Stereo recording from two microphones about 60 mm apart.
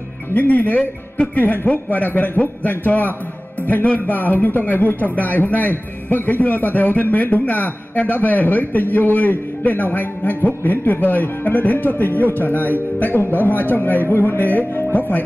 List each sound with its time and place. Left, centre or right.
0.3 s a man's voice: left
1.4 s a man's voice: left